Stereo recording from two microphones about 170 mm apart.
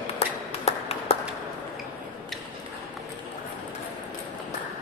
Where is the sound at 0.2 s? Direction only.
40° left (ahead or behind).